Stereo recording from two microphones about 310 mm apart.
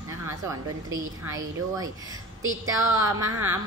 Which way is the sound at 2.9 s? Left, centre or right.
Centre.